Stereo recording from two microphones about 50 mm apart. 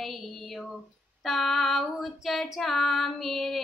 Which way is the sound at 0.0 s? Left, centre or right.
Centre.